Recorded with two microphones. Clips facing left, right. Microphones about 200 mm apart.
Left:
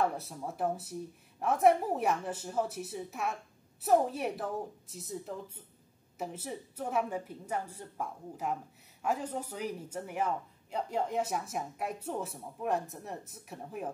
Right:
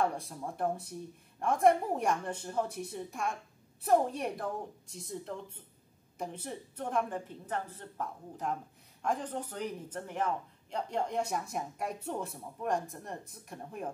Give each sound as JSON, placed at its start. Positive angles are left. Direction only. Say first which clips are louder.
{"t": 0.0, "sound": "a woman's voice", "louder": "even", "side_deg": 5}